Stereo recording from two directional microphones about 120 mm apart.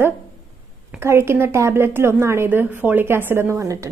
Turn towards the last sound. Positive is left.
turn(degrees=-25)  # may be behind; listen again after turning